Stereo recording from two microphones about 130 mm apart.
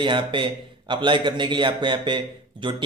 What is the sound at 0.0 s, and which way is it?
A man's voice, 40° right (ahead or behind).